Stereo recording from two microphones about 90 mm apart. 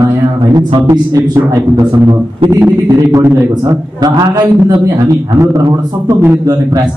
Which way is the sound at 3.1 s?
35° right (ahead or behind).